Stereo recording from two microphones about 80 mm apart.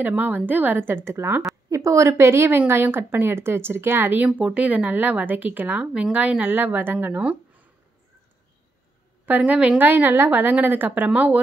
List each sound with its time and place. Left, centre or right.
0.0 s speech: right
1.7 s a woman's voice: right; by 7.3 s centre
9.4 s speech: centre